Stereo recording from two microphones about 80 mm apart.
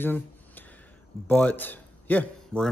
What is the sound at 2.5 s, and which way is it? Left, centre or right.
Speech, centre.